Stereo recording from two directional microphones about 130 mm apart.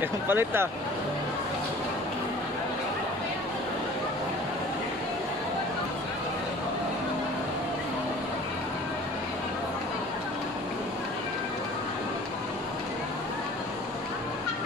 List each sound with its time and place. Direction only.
0.0 s speech: 15° right (ahead or behind)